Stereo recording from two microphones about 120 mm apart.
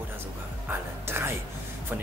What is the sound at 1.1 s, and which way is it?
Speech, 20° right (ahead or behind).